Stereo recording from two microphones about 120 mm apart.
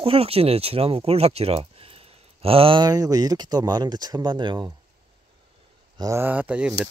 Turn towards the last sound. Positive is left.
turn(degrees=-10)  # may be behind; listen again after turning